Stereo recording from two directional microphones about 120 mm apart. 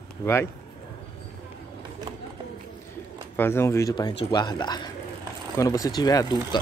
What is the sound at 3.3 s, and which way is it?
Speech, 20° left (ahead or behind).